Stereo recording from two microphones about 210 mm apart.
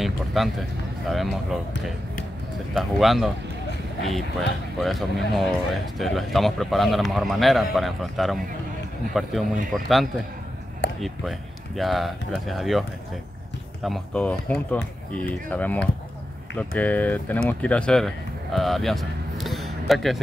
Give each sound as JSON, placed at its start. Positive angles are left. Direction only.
{"t": 0.0, "sound": "a sound", "side_deg": 0}
{"t": 1.0, "sound": "a man's voice", "side_deg": 0}
{"t": 2.7, "sound": "a man's voice", "side_deg": 0}
{"t": 11.0, "sound": "a man's voice", "side_deg": 0}
{"t": 13.8, "sound": "a man's voice", "side_deg": 5}